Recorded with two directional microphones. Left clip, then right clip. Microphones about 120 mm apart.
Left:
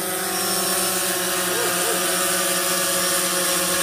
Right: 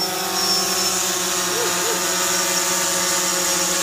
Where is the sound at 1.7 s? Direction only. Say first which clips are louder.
Right 1 dB; 5° right (ahead or behind).